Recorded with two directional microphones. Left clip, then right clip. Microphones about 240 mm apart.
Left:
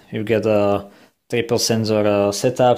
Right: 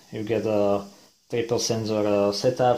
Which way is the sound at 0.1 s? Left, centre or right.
Left.